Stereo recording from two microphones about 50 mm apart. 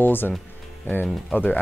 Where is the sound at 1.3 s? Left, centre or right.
Left.